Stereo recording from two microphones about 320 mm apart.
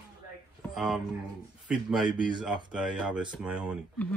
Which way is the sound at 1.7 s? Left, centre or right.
Centre.